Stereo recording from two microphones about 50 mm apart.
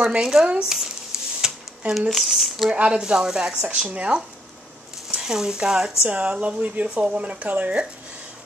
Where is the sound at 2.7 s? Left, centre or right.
Right.